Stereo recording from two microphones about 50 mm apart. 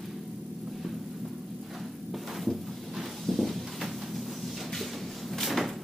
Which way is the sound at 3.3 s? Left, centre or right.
Centre.